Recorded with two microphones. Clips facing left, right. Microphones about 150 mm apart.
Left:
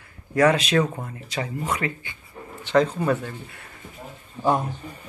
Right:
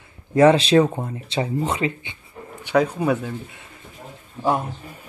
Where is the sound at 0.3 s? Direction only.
25° right (ahead or behind).